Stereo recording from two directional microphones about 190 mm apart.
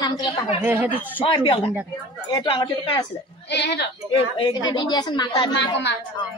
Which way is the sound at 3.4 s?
65° left (ahead or behind).